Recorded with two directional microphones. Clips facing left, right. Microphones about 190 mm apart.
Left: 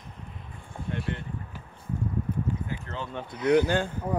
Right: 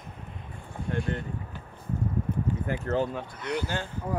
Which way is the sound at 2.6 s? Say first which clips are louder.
Right 8 dB; 45° right (ahead or behind).